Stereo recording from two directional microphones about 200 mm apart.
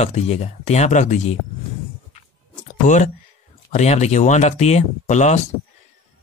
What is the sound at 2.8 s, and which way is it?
Speech, 40° left (ahead or behind).